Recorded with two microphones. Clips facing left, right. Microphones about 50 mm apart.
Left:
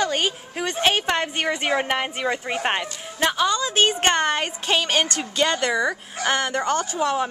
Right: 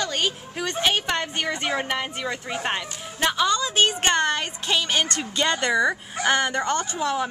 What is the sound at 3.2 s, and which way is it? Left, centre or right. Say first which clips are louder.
Speech: left 1 dB; centre.